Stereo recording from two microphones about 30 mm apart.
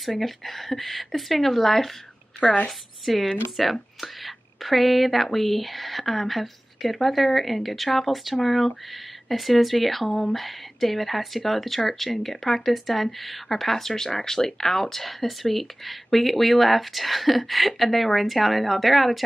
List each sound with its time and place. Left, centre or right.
0.2 s speech: centre
2.4 s a woman's voice: left
3.1 s speech: centre